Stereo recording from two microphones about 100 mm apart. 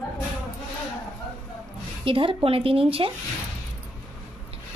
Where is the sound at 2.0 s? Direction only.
60° right (ahead or behind).